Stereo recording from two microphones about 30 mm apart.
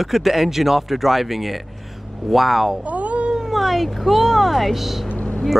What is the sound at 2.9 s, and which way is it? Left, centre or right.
Cat, right.